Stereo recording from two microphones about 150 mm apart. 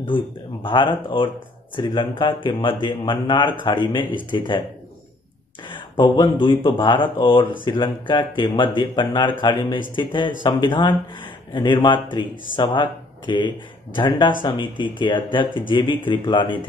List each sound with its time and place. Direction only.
0.0 s a man's voice: 35° left (ahead or behind)
5.8 s a sound: 30° left (ahead or behind)
6.4 s a man's voice: 35° left (ahead or behind)